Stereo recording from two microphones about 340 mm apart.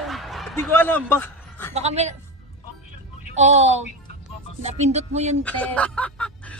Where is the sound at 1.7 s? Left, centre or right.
Centre.